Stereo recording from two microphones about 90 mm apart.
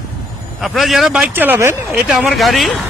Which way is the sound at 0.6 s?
Centre (ahead or behind).